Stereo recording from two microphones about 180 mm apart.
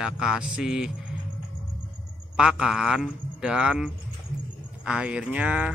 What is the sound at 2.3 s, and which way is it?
Speech, 5° right (ahead or behind).